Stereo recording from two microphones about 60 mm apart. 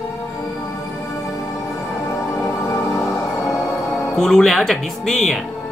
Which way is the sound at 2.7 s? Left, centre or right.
Left.